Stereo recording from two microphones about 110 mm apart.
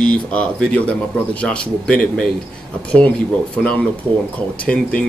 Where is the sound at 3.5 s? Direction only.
10° left (ahead or behind).